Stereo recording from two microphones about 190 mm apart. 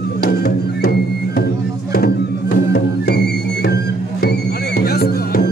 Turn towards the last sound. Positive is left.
turn(degrees=55)  # may be behind; listen again after turning